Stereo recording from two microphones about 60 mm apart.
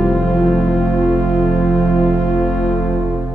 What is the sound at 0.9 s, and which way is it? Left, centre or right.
Music, centre.